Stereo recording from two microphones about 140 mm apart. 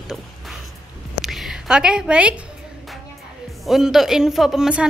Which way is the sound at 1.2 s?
Centre (ahead or behind).